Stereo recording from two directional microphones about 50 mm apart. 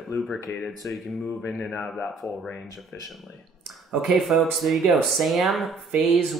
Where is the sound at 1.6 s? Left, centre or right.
Centre.